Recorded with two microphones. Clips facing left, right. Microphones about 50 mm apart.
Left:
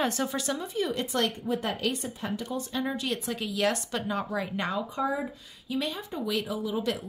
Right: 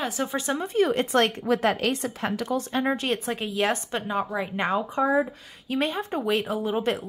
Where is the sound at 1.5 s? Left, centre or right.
Right.